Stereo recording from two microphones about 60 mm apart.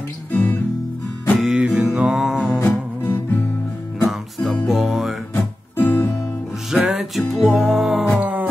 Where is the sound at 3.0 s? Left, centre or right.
Left.